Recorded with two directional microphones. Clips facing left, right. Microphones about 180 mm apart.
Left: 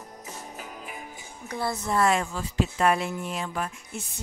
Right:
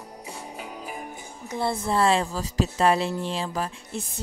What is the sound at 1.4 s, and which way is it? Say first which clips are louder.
Speech: right 3 dB; 25° right (ahead or behind).